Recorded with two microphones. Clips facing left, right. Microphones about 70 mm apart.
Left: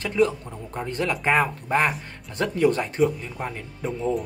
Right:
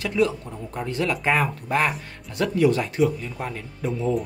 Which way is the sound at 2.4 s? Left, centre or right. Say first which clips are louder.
Right 1 dB; left.